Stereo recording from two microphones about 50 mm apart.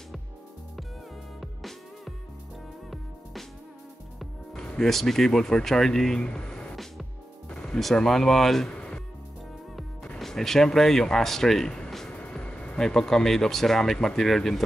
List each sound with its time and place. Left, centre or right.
1.4 s music: centre
4.7 s speech: centre
7.5 s music: centre
7.9 s speech: centre
8.6 s music: centre
10.1 s speech: centre
12.1 s music: left
12.8 s speech: centre